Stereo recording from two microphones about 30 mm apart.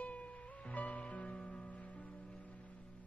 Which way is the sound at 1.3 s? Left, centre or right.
Left.